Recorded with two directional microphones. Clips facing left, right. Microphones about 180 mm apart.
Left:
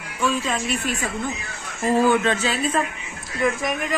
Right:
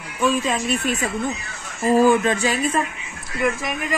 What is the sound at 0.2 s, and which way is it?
A woman's voice, 20° right (ahead or behind).